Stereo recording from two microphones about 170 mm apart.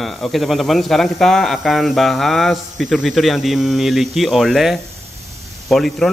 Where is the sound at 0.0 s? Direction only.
Centre (ahead or behind).